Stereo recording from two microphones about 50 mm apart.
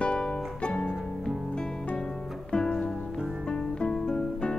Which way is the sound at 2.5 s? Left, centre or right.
Centre.